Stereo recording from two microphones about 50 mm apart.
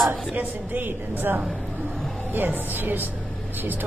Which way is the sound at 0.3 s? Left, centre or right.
Right.